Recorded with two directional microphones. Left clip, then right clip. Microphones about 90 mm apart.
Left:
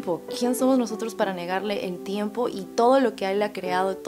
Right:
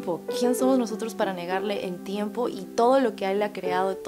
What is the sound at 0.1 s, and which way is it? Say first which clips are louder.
A woman's voice: right 1 dB; 35° right (ahead or behind).